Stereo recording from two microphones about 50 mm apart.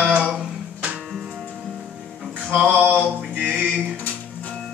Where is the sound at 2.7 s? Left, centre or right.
Right.